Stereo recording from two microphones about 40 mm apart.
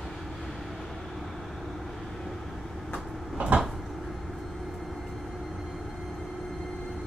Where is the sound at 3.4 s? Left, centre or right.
Right.